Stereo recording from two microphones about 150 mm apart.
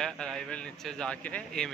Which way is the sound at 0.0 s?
5° left (ahead or behind).